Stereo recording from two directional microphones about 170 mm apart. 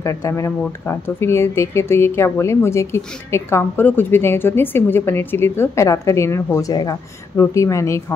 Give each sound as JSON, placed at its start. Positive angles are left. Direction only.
{"t": 0.0, "sound": "speech", "side_deg": 15}